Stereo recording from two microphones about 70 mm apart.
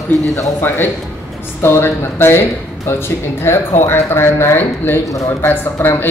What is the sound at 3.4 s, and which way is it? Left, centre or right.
Speech, left.